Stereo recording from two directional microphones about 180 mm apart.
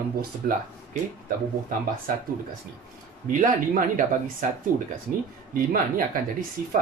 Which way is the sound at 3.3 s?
50° right (ahead or behind).